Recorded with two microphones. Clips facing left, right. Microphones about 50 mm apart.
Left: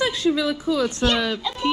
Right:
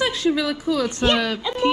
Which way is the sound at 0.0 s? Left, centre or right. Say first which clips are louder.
Even; right.